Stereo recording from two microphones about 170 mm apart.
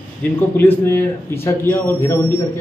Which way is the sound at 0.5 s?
15° left (ahead or behind).